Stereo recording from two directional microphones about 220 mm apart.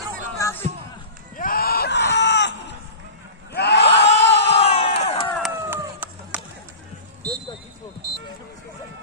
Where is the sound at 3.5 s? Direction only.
50° left (ahead or behind).